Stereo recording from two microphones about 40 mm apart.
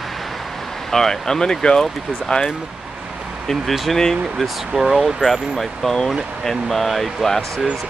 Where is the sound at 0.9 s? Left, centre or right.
Centre.